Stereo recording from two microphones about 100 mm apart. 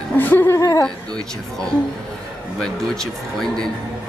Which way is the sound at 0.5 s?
35° left (ahead or behind).